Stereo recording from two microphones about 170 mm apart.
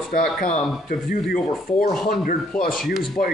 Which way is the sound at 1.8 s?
60° left (ahead or behind).